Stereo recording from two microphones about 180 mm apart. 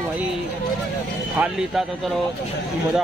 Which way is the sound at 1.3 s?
5° right (ahead or behind).